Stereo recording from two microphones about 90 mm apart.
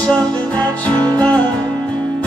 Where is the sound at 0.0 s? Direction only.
15° left (ahead or behind).